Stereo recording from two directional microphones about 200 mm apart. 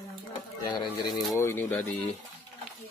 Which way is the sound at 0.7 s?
25° left (ahead or behind).